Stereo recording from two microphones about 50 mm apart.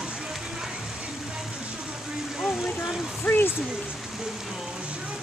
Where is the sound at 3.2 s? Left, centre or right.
Left.